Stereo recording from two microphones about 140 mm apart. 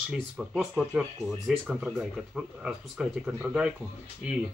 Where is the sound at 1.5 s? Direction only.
5° right (ahead or behind).